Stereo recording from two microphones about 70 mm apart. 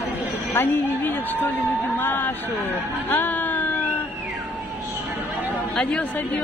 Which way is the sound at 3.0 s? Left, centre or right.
Left.